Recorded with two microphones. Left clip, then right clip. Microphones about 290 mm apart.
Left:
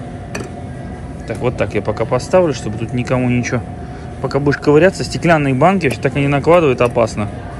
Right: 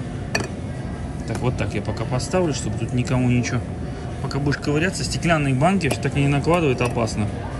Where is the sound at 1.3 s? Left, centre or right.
Centre.